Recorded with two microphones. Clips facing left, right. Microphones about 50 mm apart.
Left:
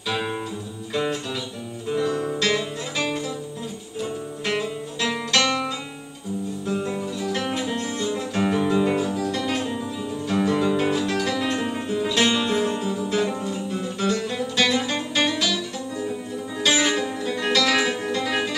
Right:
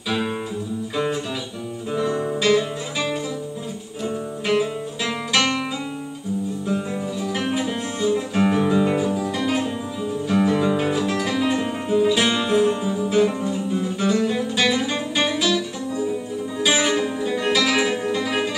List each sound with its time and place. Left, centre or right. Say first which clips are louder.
1.9 s music: right 1 dB; centre
4.5 s music: right 5 dB; centre
6.6 s guitar: right 1 dB; centre
13.5 s music: right 4 dB; centre
16.6 s music: right 1 dB; centre